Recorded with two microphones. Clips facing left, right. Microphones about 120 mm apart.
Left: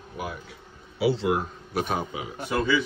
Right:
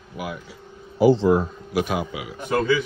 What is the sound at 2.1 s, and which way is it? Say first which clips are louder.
Speech: right 1 dB; 35° left (ahead or behind).